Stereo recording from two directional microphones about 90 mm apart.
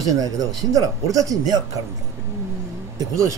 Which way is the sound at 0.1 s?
40° right (ahead or behind).